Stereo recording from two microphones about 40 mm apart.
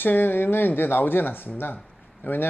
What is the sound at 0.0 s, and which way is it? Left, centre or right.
A man's voice, left.